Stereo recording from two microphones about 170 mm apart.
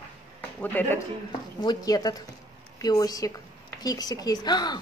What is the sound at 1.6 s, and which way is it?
A woman's voice, 25° left (ahead or behind).